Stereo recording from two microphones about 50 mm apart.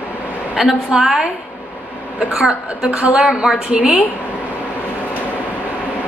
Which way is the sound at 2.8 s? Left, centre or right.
Centre.